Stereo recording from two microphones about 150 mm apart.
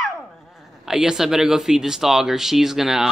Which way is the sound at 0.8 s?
5° right (ahead or behind).